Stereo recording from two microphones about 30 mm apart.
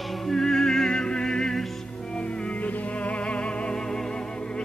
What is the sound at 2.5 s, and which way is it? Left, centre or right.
Music, left.